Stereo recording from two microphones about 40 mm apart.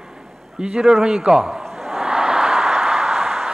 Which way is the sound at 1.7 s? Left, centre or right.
Centre.